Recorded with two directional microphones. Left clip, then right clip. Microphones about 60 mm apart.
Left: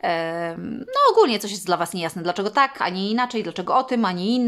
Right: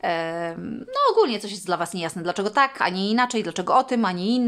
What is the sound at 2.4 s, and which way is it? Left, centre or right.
Speech, centre.